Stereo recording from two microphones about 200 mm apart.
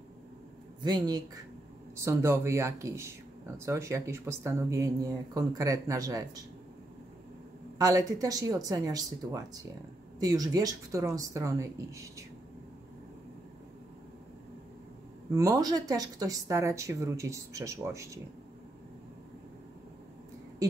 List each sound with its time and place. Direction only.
0.8 s speech: 20° right (ahead or behind)
7.8 s speech: 15° right (ahead or behind)
15.3 s speech: 15° right (ahead or behind)